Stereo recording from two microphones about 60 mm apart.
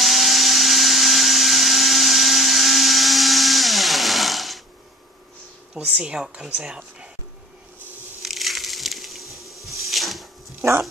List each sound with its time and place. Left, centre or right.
0.0 s vacuum cleaner: centre
5.8 s a woman's voice: centre
8.2 s a sound: centre